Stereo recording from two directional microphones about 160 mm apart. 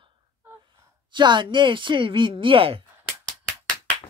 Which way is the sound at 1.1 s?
30° right (ahead or behind).